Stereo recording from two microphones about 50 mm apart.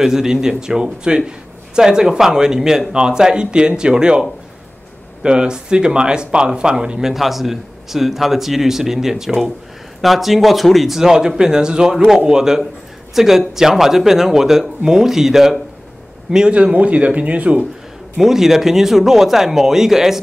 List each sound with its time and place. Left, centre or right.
0.0 s speech: centre; by 17.6 s right
18.1 s speech: centre